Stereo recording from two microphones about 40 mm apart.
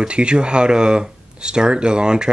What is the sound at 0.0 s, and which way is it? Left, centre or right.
Speech, right.